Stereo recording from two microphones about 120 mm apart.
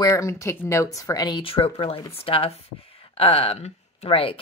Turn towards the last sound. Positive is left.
turn(degrees=50)  # may be behind; listen again after turning